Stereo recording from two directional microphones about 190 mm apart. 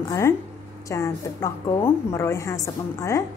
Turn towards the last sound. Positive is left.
turn(degrees=15)  # may be behind; listen again after turning